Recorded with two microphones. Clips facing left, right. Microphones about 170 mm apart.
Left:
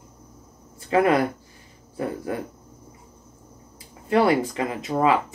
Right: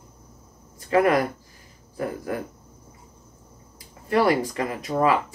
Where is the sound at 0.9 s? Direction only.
25° left (ahead or behind).